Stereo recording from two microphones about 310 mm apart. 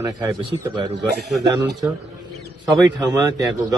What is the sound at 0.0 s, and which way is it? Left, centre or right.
A man's voice, centre.